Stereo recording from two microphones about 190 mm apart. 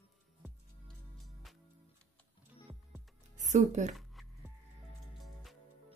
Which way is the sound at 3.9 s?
Centre (ahead or behind).